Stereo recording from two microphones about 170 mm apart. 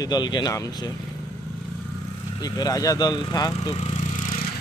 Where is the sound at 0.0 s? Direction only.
25° left (ahead or behind).